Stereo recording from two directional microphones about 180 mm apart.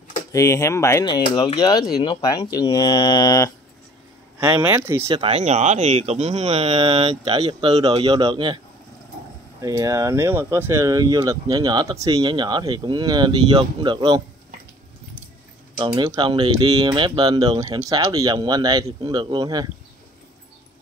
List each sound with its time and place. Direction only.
0.3 s speech: 15° left (ahead or behind)
4.4 s speech: 15° right (ahead or behind)
5.0 s speech: 30° right (ahead or behind)
7.3 s speech: 20° right (ahead or behind)
9.6 s speech: 20° right (ahead or behind)
15.8 s speech: 25° right (ahead or behind)